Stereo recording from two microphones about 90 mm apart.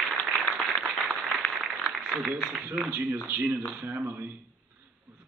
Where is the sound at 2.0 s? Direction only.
10° right (ahead or behind).